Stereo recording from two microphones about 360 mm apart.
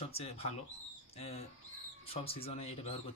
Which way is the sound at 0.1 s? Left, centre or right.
Centre.